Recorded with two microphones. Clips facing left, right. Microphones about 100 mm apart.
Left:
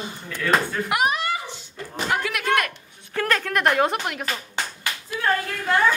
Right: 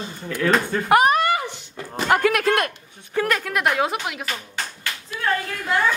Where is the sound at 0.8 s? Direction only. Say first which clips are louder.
Right 6 dB; 45° right (ahead or behind).